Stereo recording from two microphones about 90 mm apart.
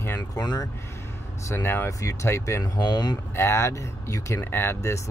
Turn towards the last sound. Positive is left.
turn(degrees=30)  # may be behind; listen again after turning